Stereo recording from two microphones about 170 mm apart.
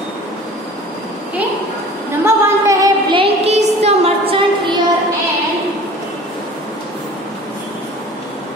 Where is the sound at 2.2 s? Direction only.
20° right (ahead or behind).